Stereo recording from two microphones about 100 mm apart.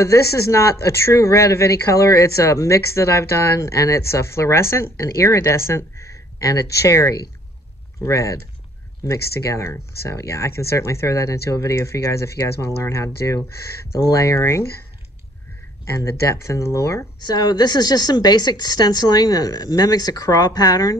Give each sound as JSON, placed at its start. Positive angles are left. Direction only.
{"t": 0.0, "sound": "a woman's voice", "side_deg": 30}
{"t": 16.0, "sound": "speech", "side_deg": 30}
{"t": 17.2, "sound": "a woman's voice", "side_deg": 40}